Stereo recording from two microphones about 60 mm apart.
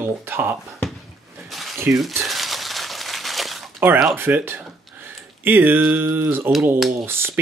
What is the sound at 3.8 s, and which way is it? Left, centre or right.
Speech, right.